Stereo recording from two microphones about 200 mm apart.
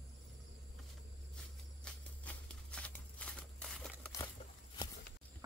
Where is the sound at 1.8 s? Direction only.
5° left (ahead or behind).